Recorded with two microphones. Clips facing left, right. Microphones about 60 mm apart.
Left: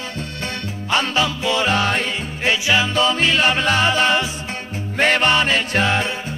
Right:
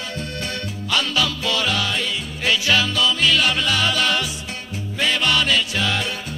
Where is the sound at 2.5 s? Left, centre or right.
Left.